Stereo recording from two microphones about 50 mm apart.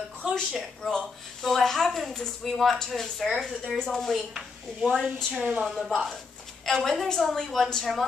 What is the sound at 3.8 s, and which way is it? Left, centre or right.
Speech, centre.